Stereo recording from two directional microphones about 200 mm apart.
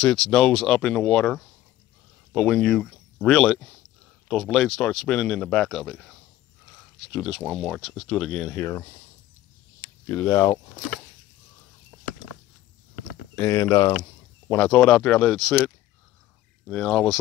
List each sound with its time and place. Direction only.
0.0 s speech: 5° left (ahead or behind)
8.5 s speech: 15° left (ahead or behind)
10.0 s speech: 15° left (ahead or behind)
11.9 s a sound: 15° left (ahead or behind)
13.4 s speech: 15° left (ahead or behind)